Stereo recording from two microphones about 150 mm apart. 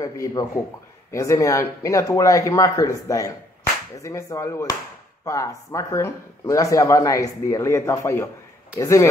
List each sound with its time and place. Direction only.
0.0 s speech: 20° left (ahead or behind)